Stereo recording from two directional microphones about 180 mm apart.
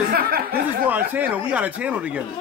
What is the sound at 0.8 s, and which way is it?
Speech, 10° right (ahead or behind).